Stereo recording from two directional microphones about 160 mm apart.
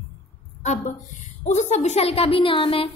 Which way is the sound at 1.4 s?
50° left (ahead or behind).